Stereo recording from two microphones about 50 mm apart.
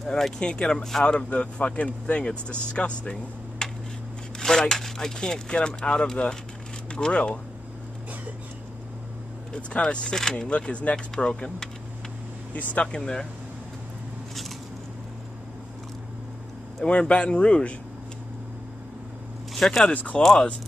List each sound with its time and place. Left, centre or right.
0.0 s speech: centre
0.4 s speech: centre
1.0 s speech: left
9.5 s speech: centre
12.8 s speech: centre
16.8 s speech: centre
19.5 s a sound: centre
19.9 s speech: left
20.2 s speech: centre